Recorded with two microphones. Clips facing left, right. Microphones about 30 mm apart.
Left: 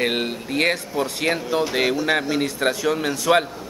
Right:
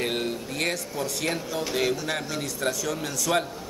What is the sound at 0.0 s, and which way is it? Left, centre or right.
A man's voice, left.